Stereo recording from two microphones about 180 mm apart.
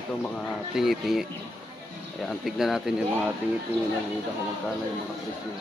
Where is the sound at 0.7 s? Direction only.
Centre (ahead or behind).